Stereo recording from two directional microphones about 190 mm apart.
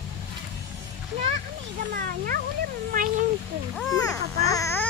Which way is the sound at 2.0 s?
50° right (ahead or behind).